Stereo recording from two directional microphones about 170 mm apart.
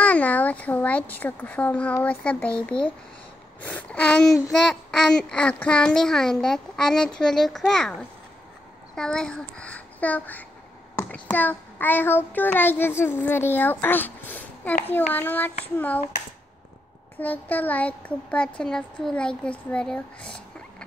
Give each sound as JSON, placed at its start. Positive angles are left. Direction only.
{"t": 0.0, "sound": "a child's voice", "side_deg": 10}
{"t": 8.9, "sound": "a child's voice", "side_deg": 5}
{"t": 17.2, "sound": "a child's voice", "side_deg": 10}